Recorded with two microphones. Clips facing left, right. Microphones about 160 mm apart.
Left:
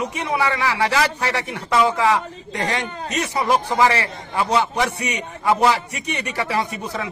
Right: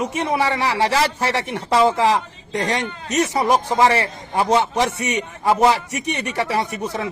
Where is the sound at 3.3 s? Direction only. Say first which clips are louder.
Left 1 dB; 20° right (ahead or behind).